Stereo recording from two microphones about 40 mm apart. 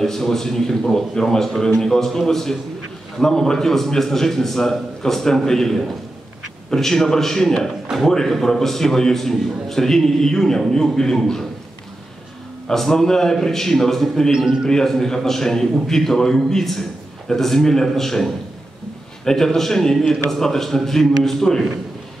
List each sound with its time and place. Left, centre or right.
0.0 s a man's voice: centre
12.6 s a man's voice: centre
14.3 s a man's voice: centre
14.7 s a man's voice: centre